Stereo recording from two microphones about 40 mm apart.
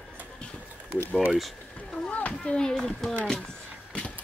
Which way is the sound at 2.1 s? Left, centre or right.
Left.